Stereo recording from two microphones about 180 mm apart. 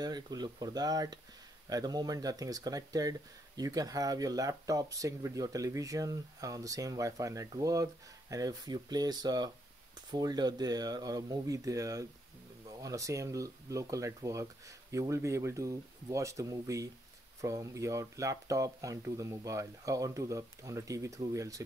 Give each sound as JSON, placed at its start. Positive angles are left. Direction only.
{"t": 0.0, "sound": "speech", "side_deg": -20}